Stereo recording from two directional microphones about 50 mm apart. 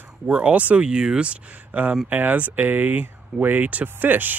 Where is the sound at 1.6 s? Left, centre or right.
Right.